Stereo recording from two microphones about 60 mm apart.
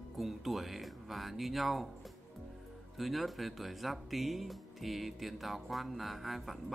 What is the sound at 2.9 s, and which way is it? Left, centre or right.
Speech, centre.